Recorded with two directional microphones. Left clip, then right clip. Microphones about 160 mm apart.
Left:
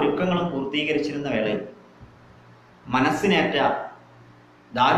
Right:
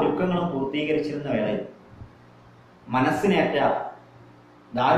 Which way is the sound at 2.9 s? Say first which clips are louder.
Left 1 dB; 10° left (ahead or behind).